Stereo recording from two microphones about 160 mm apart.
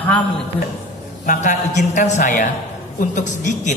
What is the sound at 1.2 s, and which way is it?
A woman's voice, 50° left (ahead or behind).